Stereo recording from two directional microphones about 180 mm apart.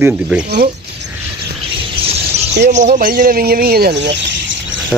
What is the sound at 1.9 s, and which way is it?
Bird, 30° right (ahead or behind).